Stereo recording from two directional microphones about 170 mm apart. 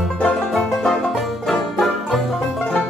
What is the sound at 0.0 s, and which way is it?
Music, 5° left (ahead or behind).